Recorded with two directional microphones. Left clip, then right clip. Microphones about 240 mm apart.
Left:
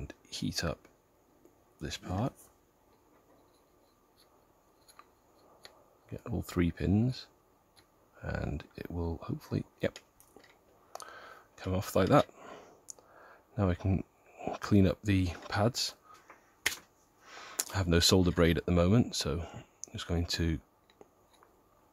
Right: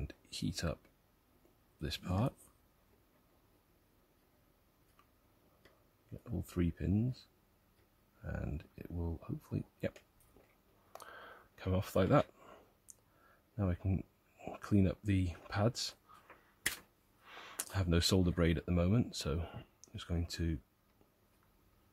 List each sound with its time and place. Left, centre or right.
0.0 s a sound: centre
1.8 s speech: centre
6.2 s speech: centre
10.9 s a sound: centre
13.6 s speech: centre
17.2 s speech: centre